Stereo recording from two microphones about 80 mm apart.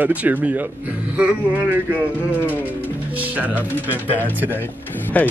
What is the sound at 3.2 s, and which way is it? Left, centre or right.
Speech, right.